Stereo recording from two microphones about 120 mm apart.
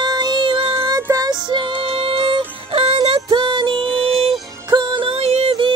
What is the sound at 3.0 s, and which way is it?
Music, 45° right (ahead or behind).